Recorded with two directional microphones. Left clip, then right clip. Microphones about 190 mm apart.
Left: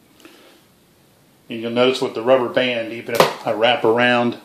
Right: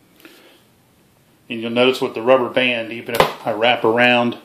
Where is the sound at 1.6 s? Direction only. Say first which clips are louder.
Right 1 dB; 30° right (ahead or behind).